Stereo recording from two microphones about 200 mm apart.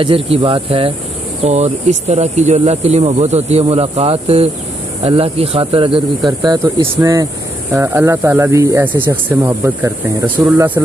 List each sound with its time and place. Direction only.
0.0 s speech: 25° right (ahead or behind); by 10.8 s 10° right (ahead or behind)